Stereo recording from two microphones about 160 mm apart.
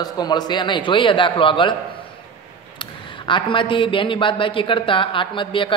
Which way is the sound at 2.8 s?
30° left (ahead or behind).